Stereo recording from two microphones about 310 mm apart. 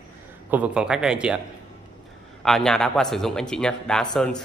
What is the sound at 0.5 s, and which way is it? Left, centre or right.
Speech, centre.